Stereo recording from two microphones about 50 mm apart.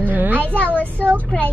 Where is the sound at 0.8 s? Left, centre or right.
Right.